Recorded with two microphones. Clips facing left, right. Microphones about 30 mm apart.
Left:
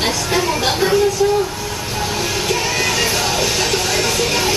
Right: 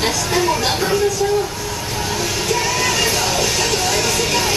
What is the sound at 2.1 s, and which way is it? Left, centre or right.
Music, centre.